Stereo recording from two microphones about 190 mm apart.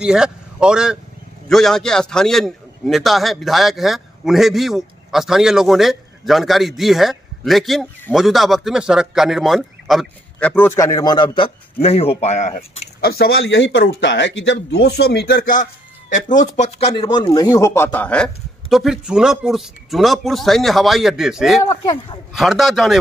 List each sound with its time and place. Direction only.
0.0 s a man's voice: 5° right (ahead or behind)
10.5 s a man's voice: 15° left (ahead or behind)